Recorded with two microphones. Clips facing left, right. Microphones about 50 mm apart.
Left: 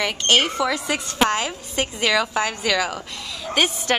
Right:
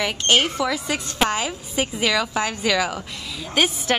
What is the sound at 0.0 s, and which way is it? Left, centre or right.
A woman's voice, centre.